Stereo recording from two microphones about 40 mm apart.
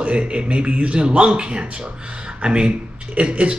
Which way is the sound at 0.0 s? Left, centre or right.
Right.